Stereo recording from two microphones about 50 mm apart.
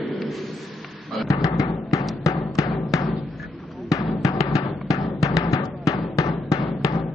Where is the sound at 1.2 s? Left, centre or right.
Left.